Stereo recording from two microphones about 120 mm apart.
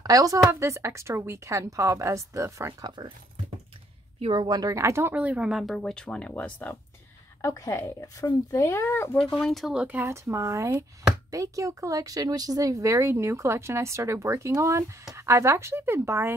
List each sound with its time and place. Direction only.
0.0 s speech: 30° right (ahead or behind)
2.8 s speech: 35° right (ahead or behind)
4.2 s speech: 40° right (ahead or behind); by 5.1 s 25° right (ahead or behind)
5.1 s speech: 10° right (ahead or behind); by 6.8 s 15° left (ahead or behind)
7.4 s speech: 25° left (ahead or behind)
9.4 s speech: centre (ahead or behind)
9.8 s speech: 20° right (ahead or behind)